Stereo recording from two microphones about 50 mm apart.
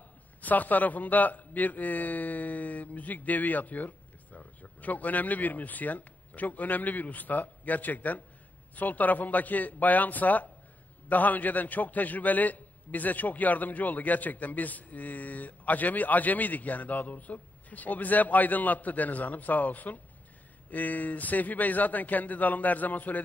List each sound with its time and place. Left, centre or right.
0.4 s a man's voice: left